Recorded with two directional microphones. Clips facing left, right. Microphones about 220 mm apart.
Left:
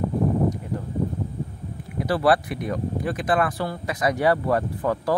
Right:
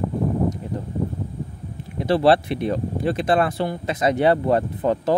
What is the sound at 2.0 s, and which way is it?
Speech, 25° right (ahead or behind).